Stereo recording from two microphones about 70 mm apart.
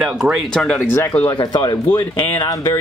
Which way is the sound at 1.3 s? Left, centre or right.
Left.